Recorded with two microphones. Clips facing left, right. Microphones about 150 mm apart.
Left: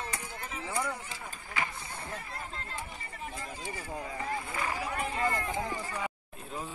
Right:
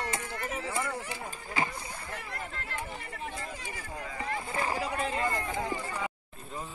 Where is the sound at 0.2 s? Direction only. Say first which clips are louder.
Right 5 dB; 80° right.